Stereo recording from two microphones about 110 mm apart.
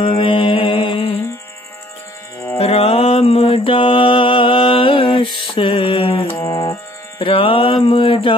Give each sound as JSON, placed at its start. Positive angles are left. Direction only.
{"t": 0.0, "sound": "mantra", "side_deg": 50}
{"t": 2.6, "sound": "mantra", "side_deg": 65}
{"t": 7.2, "sound": "music", "side_deg": 50}